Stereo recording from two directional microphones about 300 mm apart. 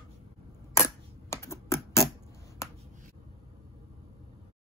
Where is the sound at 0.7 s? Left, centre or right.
Centre.